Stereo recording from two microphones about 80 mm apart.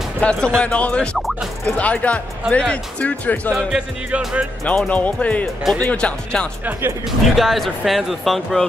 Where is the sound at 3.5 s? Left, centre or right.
Centre.